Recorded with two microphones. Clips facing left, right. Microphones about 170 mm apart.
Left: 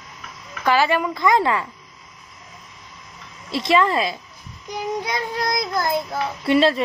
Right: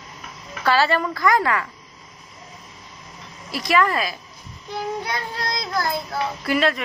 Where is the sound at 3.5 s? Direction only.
25° left (ahead or behind).